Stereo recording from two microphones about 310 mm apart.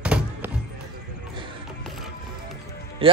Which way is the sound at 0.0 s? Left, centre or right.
Centre.